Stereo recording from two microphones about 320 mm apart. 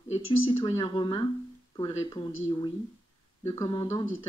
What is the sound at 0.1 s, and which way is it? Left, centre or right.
Speech, centre.